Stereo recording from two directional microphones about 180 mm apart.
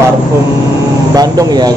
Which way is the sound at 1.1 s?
20° right (ahead or behind).